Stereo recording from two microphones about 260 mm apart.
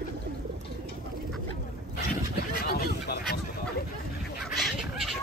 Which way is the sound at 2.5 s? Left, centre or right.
Left.